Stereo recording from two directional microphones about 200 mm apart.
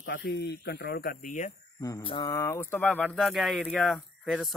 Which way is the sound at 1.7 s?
15° left (ahead or behind).